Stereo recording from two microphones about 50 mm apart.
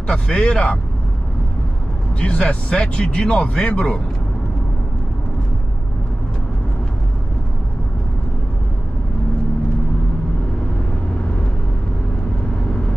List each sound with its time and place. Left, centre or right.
0.0 s speech: left
2.1 s speech: left